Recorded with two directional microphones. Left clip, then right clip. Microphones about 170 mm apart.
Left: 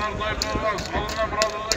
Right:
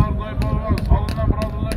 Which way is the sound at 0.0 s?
60° right (ahead or behind).